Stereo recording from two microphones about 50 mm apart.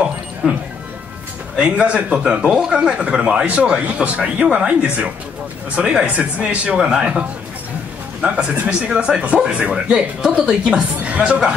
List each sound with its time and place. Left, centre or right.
0.0 s music: right
1.6 s a woman's voice: right